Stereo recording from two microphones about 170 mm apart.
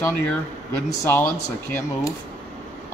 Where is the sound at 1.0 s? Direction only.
15° left (ahead or behind).